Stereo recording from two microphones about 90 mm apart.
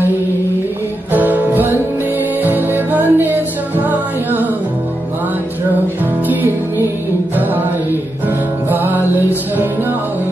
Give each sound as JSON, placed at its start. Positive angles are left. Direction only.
{"t": 1.1, "sound": "music", "side_deg": -20}
{"t": 8.6, "sound": "music", "side_deg": -20}